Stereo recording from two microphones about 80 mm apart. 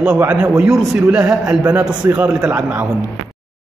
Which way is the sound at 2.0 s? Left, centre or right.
Right.